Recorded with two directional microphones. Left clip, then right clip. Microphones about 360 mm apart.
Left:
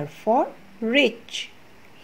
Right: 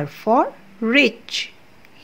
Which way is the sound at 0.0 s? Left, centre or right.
Centre.